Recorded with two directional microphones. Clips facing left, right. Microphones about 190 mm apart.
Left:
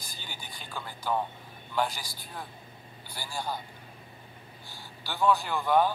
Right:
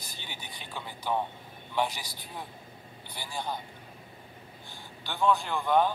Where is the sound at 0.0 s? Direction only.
65° right (ahead or behind).